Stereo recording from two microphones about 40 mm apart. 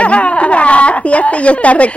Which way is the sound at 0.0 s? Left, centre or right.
Left.